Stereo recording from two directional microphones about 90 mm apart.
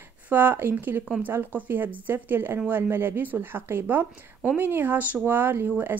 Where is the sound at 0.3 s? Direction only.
20° right (ahead or behind).